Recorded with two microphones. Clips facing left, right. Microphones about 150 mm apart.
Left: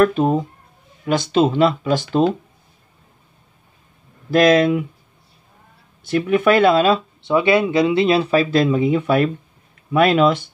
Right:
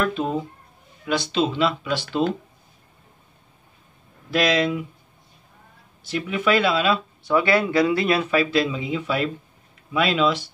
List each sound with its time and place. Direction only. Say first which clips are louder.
0.0 s speech: left 8 dB; 45° left (ahead or behind)
4.3 s speech: left 7 dB; 50° left (ahead or behind)
6.0 s speech: left 7 dB; 55° left (ahead or behind)
7.2 s speech: left 4 dB; 25° left (ahead or behind); by 10.5 s 50° left (ahead or behind)